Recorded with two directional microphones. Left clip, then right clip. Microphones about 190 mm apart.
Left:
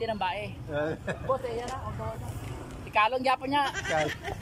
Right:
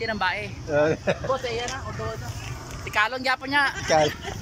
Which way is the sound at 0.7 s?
20° right (ahead or behind).